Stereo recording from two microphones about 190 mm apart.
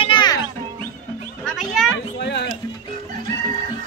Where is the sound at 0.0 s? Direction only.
25° left (ahead or behind).